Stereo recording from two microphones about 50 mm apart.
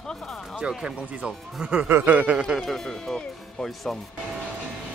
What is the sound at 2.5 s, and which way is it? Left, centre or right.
Speech, centre.